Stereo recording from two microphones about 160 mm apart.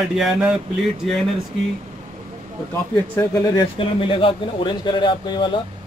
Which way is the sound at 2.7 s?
15° left (ahead or behind).